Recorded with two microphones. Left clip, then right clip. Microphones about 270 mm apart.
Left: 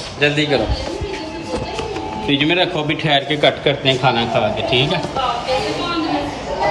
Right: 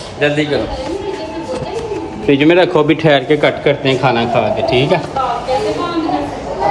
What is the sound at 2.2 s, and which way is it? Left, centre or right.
A man's voice, right.